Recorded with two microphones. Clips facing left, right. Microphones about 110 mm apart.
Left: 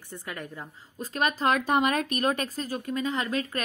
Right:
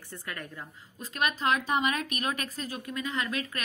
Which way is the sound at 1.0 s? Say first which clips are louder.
Left 3 dB; 35° left (ahead or behind).